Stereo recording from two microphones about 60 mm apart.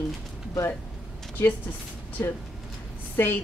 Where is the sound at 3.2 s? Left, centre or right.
Left.